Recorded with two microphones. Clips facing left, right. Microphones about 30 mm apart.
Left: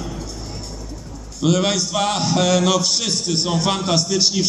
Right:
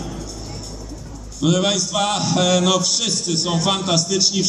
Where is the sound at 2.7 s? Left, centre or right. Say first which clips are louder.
Even; left.